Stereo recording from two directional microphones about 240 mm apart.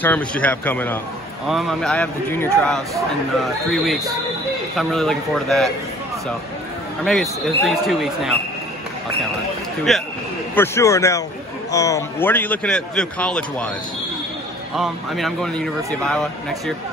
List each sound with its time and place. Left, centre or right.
0.0 s a man's voice: centre
7.1 s a man's voice: centre
9.9 s a man's voice: centre
14.8 s a man's voice: centre